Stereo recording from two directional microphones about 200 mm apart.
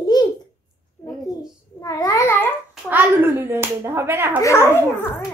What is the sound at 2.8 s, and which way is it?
Clapping, 10° right (ahead or behind).